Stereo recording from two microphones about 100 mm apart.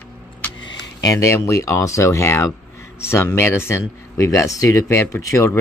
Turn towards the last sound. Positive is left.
turn(degrees=30)  # may be behind; listen again after turning